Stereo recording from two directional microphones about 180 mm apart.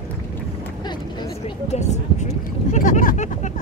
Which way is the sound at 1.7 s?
40° left (ahead or behind).